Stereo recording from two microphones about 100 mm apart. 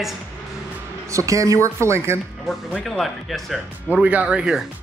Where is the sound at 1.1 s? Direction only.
30° right (ahead or behind).